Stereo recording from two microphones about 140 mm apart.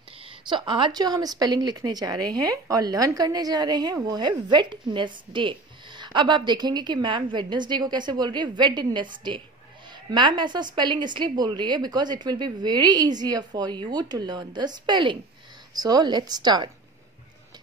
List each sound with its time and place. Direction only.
0.2 s a woman's voice: 35° right (ahead or behind)